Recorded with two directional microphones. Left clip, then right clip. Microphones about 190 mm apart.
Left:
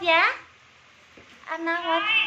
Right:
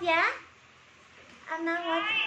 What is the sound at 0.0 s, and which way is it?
Speech, 10° right (ahead or behind).